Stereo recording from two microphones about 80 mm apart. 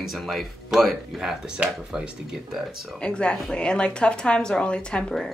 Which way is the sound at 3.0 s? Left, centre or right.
Centre.